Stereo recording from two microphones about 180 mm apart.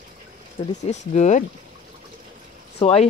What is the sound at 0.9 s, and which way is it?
Speech, 40° left (ahead or behind).